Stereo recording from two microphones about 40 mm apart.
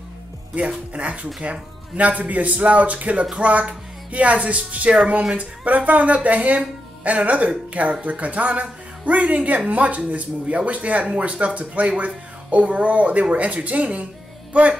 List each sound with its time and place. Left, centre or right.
0.6 s speech: right
14.5 s music: right